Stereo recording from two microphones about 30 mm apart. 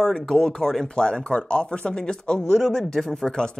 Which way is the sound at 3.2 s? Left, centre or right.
Left.